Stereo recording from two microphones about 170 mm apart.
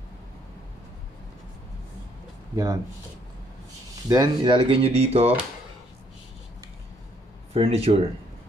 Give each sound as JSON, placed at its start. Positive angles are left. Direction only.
{"t": 2.5, "sound": "speech", "side_deg": -20}
{"t": 4.1, "sound": "speech", "side_deg": -25}
{"t": 7.5, "sound": "speech", "side_deg": -35}